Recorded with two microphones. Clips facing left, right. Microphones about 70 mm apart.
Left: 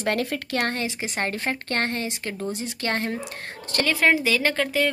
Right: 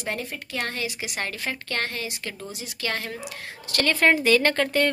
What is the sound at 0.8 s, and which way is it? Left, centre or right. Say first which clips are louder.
Speech: left 3 dB; left.